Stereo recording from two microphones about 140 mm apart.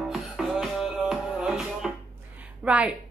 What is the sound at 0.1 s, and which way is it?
Music, centre (ahead or behind).